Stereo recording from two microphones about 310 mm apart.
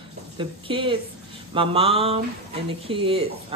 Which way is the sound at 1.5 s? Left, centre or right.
Centre.